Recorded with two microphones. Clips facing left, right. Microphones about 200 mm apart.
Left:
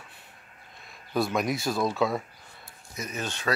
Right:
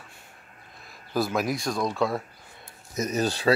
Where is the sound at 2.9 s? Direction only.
40° right (ahead or behind).